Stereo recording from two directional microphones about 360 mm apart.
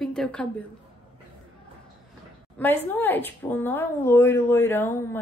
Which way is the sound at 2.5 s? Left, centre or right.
Centre.